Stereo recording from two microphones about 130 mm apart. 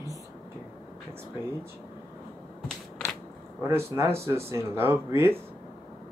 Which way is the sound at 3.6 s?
20° right (ahead or behind).